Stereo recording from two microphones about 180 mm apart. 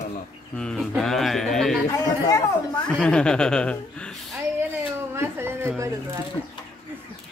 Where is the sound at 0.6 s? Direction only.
5° left (ahead or behind).